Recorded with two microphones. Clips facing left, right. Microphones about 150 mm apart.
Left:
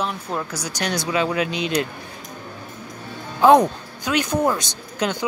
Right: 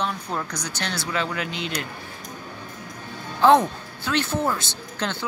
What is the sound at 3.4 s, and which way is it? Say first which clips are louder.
Speech: left 3 dB; 15° left (ahead or behind).